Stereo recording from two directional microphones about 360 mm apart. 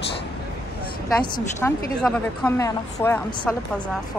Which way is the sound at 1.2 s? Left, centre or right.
Centre.